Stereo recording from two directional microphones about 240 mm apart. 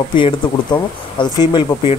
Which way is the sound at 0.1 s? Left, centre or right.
Centre.